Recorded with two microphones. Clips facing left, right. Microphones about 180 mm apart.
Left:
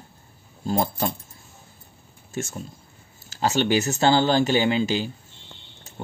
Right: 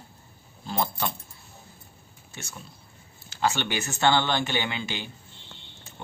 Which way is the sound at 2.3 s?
45° left (ahead or behind).